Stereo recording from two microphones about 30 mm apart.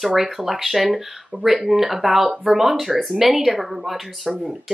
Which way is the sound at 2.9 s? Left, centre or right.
Centre.